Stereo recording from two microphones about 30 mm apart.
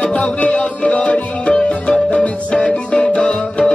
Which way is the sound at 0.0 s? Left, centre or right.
Left.